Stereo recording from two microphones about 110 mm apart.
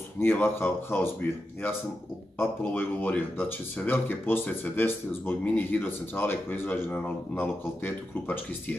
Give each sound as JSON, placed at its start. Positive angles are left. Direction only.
{"t": 0.2, "sound": "speech", "side_deg": 20}
{"t": 2.3, "sound": "speech", "side_deg": 20}